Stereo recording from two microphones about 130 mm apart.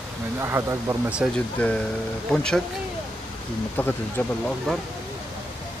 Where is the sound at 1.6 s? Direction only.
10° left (ahead or behind).